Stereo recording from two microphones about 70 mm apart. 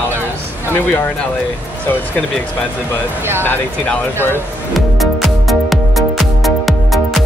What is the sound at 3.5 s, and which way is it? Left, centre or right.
Speech, left.